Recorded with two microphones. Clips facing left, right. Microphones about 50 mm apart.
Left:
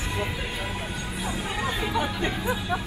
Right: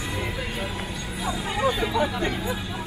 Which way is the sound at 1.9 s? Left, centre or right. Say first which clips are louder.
Right 2 dB; left.